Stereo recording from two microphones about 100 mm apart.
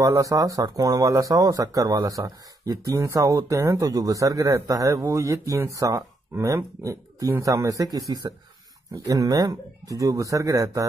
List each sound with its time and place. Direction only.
0.0 s speech: 35° right (ahead or behind)